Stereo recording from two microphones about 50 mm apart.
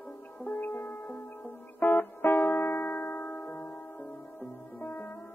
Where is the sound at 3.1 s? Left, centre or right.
Left.